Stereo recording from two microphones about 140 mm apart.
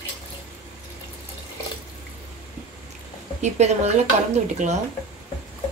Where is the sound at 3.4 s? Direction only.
55° right (ahead or behind).